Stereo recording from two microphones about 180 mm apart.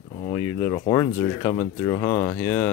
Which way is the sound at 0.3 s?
15° left (ahead or behind).